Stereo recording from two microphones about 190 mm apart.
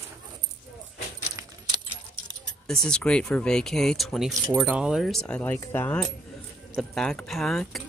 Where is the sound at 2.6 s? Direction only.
5° left (ahead or behind).